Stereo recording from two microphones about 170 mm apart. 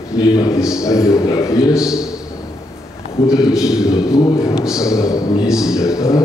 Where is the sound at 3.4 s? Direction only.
5° right (ahead or behind).